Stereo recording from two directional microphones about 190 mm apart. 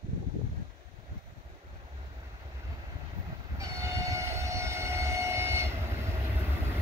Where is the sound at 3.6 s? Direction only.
15° right (ahead or behind).